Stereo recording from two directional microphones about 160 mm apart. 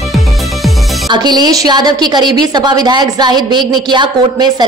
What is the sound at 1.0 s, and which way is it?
A woman's voice, 25° right (ahead or behind).